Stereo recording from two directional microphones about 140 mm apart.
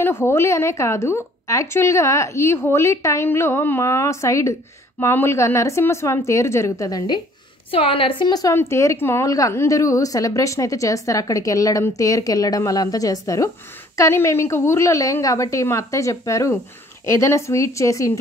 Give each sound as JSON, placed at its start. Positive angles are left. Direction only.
{"t": 0.0, "sound": "a woman's voice", "side_deg": 15}
{"t": 7.7, "sound": "a woman's voice", "side_deg": 40}